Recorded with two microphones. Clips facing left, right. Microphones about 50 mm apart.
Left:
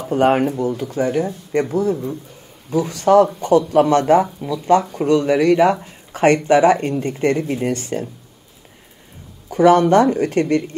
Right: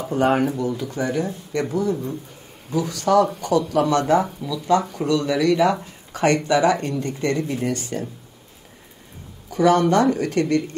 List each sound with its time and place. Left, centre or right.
0.3 s speech: left
0.8 s speech: left
9.5 s speech: left
9.8 s speech: left